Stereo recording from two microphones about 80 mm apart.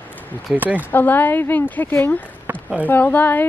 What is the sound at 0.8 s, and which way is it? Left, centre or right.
Speech, left.